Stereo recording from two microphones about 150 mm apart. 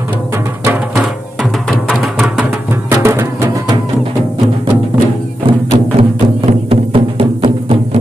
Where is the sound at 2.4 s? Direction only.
15° right (ahead or behind).